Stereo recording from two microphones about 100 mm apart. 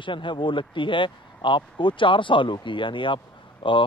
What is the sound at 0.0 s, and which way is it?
Speech, 55° left (ahead or behind).